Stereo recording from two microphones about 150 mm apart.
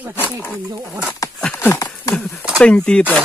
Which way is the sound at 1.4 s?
10° left (ahead or behind).